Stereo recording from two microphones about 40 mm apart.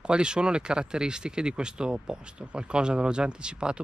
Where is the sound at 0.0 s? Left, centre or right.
Right.